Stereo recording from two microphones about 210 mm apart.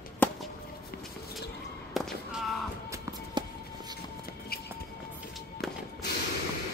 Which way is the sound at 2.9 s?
20° right (ahead or behind).